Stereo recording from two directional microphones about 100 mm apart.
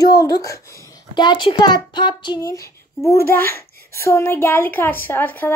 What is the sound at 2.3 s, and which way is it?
A child's voice, 30° left (ahead or behind).